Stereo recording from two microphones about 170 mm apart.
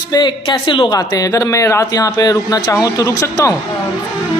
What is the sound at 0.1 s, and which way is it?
Speech, 25° left (ahead or behind).